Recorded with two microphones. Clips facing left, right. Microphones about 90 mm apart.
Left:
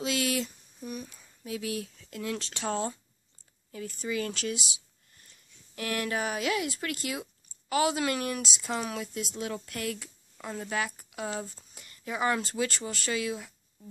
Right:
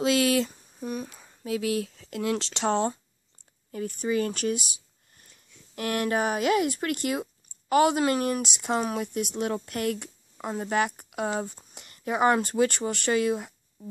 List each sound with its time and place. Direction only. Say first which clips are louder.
0.0 s speech: right 7 dB; 90° right
0.5 s humming: right 6 dB; 45° right (ahead or behind)
1.1 s speech: right 7 dB; 75° right (ahead or behind)
3.7 s speech: right 6 dB; 50° right (ahead or behind)
5.8 s speech: right 5 dB; 45° right (ahead or behind)